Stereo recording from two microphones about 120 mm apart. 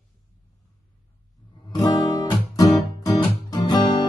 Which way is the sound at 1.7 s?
35° left (ahead or behind).